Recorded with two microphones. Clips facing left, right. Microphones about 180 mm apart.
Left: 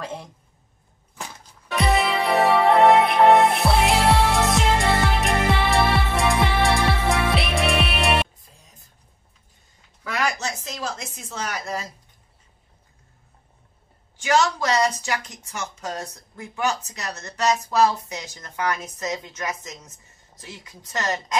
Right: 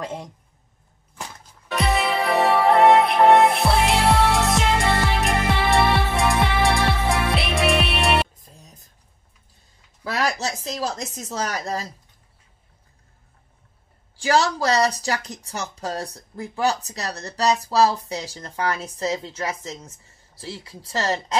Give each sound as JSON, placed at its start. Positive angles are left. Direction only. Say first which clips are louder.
{"t": 0.0, "sound": "a man's voice", "louder": "right 2 dB", "side_deg": -20}
{"t": 1.8, "sound": "music", "louder": "left 1 dB", "side_deg": 0}
{"t": 8.4, "sound": "music", "louder": "right 5 dB", "side_deg": -40}
{"t": 10.0, "sound": "a sound", "louder": "right 2 dB", "side_deg": -35}
{"t": 11.1, "sound": "speech", "louder": "right 3 dB", "side_deg": -40}
{"t": 14.1, "sound": "speech", "louder": "right 1 dB", "side_deg": -35}